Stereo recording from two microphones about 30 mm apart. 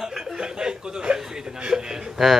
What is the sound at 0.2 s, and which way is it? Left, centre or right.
Chuckle, right.